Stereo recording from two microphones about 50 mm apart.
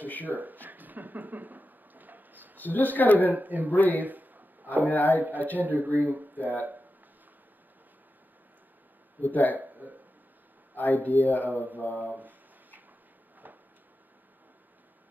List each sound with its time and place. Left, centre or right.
0.2 s a sound: right
2.6 s speech: left
3.3 s speech: right
3.7 s speech: left
4.0 s a sound: right
4.9 s speech: left
5.2 s speech: right
9.2 s speech: left
9.6 s speech: right
11.1 s speech: left
11.5 s speech: right
12.0 s a sound: right